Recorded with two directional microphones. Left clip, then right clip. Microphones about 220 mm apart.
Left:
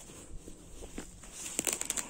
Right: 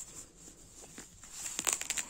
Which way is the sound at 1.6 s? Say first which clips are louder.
Right 2 dB; 15° left (ahead or behind).